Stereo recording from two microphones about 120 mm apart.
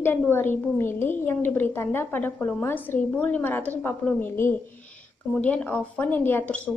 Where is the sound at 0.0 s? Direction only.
20° left (ahead or behind).